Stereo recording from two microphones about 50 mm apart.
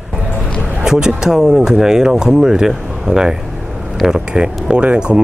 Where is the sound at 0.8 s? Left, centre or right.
Centre.